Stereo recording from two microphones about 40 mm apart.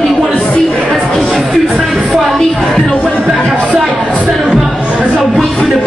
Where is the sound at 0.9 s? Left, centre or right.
Centre.